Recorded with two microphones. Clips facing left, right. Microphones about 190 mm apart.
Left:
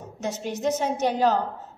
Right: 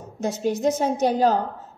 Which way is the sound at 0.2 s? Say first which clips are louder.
Right 5 dB; 35° right (ahead or behind).